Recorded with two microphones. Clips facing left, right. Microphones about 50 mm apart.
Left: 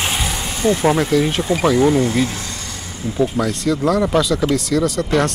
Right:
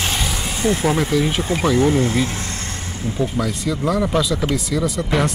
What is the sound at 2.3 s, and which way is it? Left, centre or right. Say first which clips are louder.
Vehicle: right 1 dB; right.